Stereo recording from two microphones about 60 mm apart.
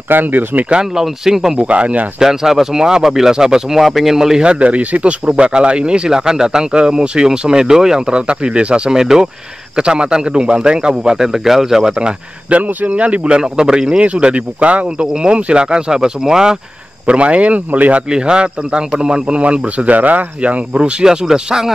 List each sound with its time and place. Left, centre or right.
0.1 s speech: right
0.7 s speech: centre
1.6 s speech: right
2.1 s speech: centre; by 18.0 s right
18.1 s speech: centre